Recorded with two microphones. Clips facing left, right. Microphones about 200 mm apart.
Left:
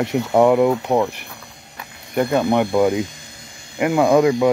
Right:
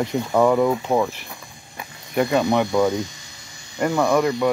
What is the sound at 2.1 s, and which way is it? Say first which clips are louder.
Speech: left 1 dB; centre (ahead or behind).